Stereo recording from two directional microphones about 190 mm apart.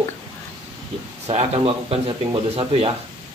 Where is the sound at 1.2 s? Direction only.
35° right (ahead or behind).